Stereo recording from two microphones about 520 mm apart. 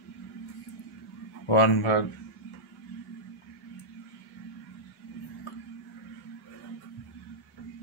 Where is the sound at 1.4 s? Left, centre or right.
Left.